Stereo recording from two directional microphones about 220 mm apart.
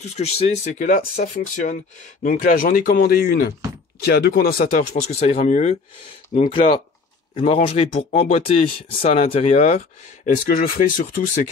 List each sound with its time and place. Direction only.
0.1 s speech: 30° left (ahead or behind)